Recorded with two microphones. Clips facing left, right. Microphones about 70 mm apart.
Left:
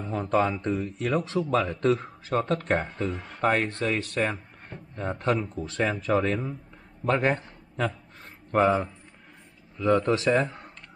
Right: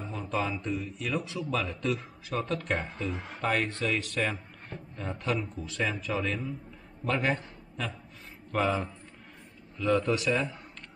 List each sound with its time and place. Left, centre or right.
0.1 s a man's voice: left
3.1 s speech: centre
3.4 s a man's voice: left
9.8 s speech: left